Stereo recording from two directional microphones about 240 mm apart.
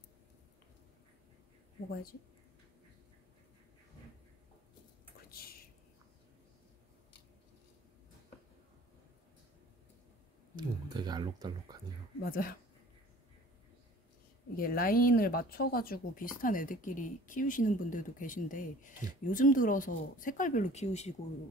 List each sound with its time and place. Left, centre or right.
5.3 s a sound: left
10.5 s speech: centre
12.2 s speech: left
14.6 s speech: left